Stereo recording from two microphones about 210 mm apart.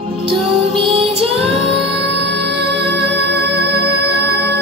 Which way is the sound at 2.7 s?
55° right (ahead or behind).